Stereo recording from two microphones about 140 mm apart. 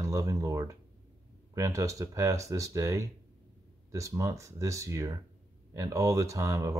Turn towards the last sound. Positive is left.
turn(degrees=-25)  # may be behind; listen again after turning